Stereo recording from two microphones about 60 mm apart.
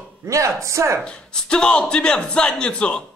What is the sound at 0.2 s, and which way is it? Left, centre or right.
Speech, right.